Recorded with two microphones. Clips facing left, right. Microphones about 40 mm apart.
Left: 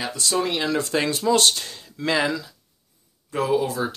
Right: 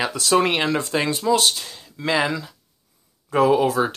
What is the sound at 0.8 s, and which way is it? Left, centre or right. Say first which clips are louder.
Speech: right 1 dB; centre.